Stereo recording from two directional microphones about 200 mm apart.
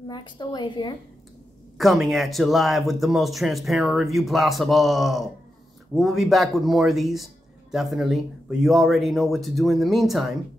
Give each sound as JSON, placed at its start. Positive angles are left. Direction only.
{"t": 0.1, "sound": "a woman's voice", "side_deg": 20}
{"t": 1.8, "sound": "speech", "side_deg": 0}